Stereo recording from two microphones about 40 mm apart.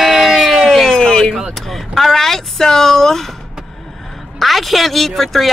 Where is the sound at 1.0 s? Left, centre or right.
Centre.